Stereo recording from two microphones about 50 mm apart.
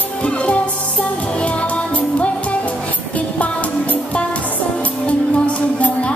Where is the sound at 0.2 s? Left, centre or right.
Left.